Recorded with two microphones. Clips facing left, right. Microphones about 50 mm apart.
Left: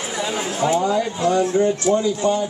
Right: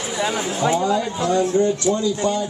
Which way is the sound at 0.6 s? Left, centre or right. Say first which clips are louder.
Left 1 dB; left.